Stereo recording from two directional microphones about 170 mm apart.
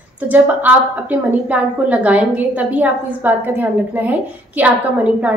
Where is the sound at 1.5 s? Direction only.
5° right (ahead or behind).